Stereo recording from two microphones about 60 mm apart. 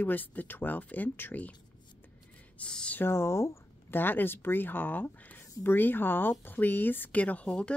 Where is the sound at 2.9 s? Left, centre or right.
Left.